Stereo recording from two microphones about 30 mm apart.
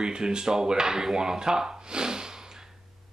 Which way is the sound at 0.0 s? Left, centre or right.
Right.